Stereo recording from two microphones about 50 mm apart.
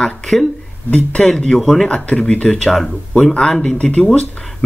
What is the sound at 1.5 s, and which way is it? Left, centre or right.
Speech, centre.